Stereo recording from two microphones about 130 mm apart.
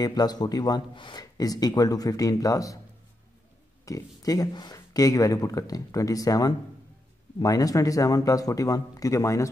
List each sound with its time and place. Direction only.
0.0 s speech: 30° left (ahead or behind)
3.8 s speech: 25° left (ahead or behind)